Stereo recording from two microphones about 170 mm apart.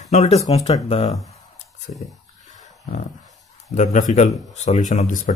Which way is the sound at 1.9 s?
45° left (ahead or behind).